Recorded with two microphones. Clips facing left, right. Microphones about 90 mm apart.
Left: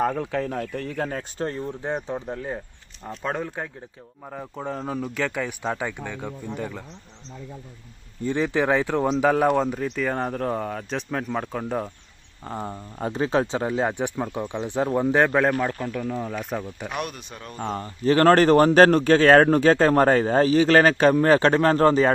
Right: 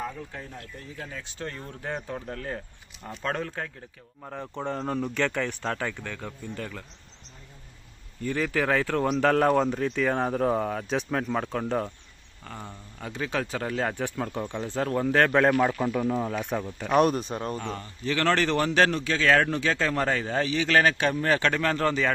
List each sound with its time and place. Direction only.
0.0 s speech: 80° left; by 1.2 s 60° left (ahead or behind)
1.7 s speech: 20° left (ahead or behind)
8.2 s speech: 20° left (ahead or behind)
9.3 s speech: 5° left (ahead or behind)
12.4 s speech: 35° left (ahead or behind); by 15.3 s 15° left (ahead or behind)
15.8 s speech: 10° right (ahead or behind)
16.9 s speech: 35° right (ahead or behind)
17.6 s speech: 35° left (ahead or behind)